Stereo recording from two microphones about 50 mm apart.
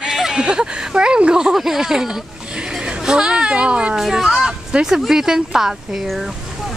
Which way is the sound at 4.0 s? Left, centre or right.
Centre.